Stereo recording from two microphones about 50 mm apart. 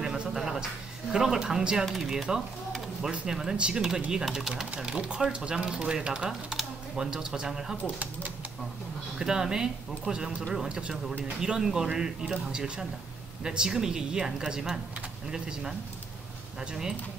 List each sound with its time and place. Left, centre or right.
0.0 s a sound: centre
1.1 s a woman's voice: centre
9.2 s a woman's voice: centre